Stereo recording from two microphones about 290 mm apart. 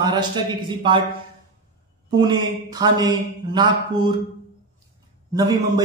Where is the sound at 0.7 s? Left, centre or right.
Centre.